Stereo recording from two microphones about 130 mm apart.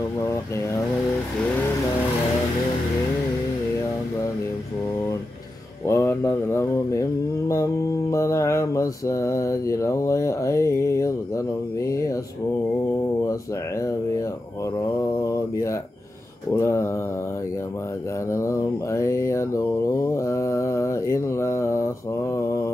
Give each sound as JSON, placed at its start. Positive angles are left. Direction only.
{"t": 5.9, "sound": "mantra", "side_deg": 20}
{"t": 13.3, "sound": "mantra", "side_deg": 25}
{"t": 15.2, "sound": "mantra", "side_deg": 25}
{"t": 18.3, "sound": "mantra", "side_deg": 20}